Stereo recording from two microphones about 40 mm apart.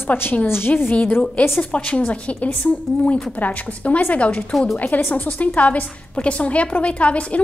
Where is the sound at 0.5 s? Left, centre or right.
Left.